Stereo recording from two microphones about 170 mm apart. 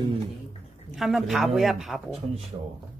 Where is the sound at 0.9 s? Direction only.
Centre (ahead or behind).